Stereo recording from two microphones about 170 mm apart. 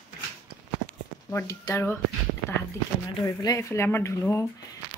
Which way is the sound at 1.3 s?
20° left (ahead or behind).